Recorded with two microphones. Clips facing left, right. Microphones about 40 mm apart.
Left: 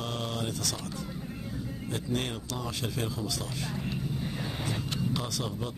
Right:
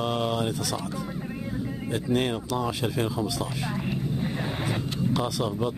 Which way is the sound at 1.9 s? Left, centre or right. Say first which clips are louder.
Right 7 dB; centre.